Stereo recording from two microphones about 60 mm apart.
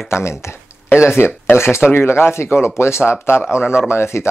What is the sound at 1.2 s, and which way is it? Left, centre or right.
Speech, left.